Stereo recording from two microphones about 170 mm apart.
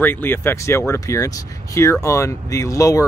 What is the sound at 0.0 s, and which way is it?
Speech, 10° left (ahead or behind).